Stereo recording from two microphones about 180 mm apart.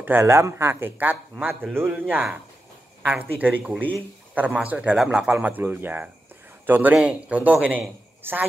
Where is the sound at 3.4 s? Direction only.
10° right (ahead or behind).